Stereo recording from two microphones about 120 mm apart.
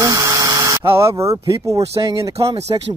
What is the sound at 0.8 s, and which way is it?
Speech, 25° right (ahead or behind).